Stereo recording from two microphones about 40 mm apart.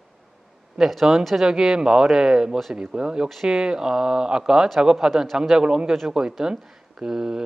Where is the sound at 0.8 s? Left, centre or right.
Centre.